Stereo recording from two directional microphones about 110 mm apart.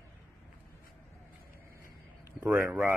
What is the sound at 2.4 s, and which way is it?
Speech, 20° right (ahead or behind).